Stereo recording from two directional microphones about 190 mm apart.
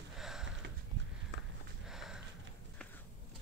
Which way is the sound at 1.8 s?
Centre (ahead or behind).